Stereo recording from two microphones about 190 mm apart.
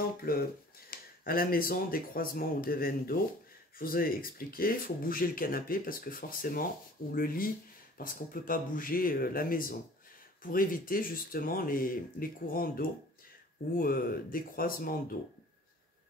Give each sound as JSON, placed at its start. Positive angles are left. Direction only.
{"t": 0.2, "sound": "speech", "side_deg": 50}